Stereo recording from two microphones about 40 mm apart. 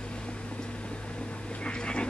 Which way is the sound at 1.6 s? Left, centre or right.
Left.